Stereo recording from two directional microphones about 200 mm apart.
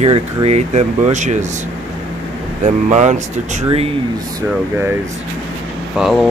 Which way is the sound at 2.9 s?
35° right (ahead or behind).